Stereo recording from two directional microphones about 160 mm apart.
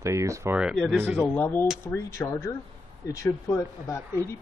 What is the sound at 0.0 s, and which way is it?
Speech, 20° right (ahead or behind).